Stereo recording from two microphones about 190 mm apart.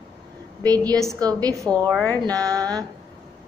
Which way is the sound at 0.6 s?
20° right (ahead or behind).